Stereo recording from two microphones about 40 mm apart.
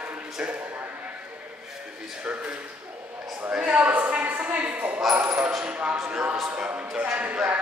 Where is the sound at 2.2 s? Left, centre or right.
Right.